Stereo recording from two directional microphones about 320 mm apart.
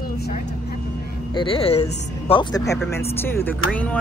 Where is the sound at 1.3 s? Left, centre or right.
Centre.